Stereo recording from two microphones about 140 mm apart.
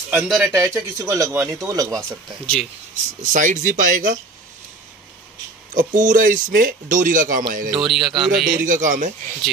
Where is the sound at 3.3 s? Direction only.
70° right (ahead or behind).